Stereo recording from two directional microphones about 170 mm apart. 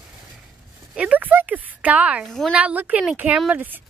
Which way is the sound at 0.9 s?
10° right (ahead or behind).